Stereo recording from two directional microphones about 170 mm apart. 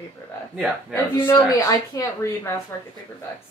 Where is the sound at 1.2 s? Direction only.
15° left (ahead or behind).